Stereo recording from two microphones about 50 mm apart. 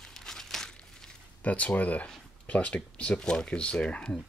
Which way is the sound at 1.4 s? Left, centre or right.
Left.